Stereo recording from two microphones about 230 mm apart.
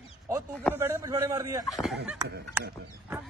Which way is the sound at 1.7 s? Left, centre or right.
Centre.